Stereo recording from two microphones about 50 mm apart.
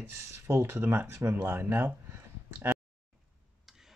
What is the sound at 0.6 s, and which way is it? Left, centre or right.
Speech, right.